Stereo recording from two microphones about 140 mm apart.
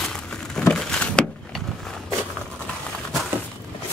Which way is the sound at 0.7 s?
5° left (ahead or behind).